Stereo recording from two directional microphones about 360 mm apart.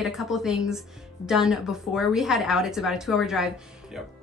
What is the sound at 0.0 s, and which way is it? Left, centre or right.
A woman's voice, centre.